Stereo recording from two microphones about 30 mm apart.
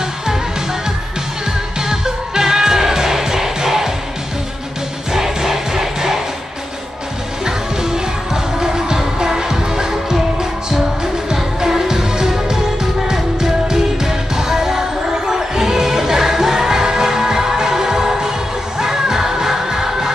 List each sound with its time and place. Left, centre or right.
1.8 s music: centre
5.1 s music: centre
7.4 s music: right
11.3 s music: centre